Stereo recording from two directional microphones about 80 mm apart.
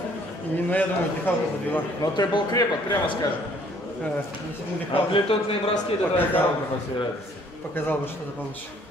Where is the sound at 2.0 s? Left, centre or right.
Left.